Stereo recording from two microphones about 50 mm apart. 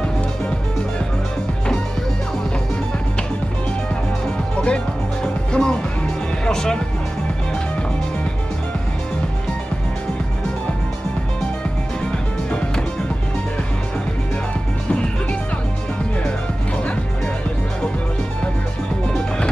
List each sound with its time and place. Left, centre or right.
4.6 s music: left
12.4 s music: left
16.3 s music: left
19.0 s music: centre